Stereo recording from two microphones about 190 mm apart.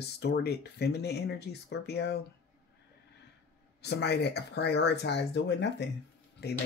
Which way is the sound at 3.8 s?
60° left (ahead or behind).